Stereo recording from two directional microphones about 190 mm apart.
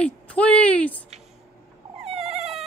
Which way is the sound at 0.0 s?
5° left (ahead or behind).